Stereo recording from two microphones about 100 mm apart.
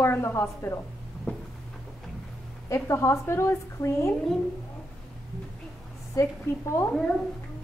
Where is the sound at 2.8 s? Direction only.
30° left (ahead or behind).